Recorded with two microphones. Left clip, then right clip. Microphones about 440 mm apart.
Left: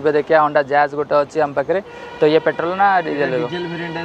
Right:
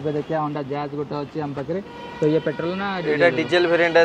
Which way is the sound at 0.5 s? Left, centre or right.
Left.